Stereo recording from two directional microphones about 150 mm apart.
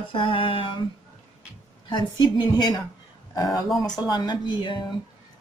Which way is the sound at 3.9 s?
25° left (ahead or behind).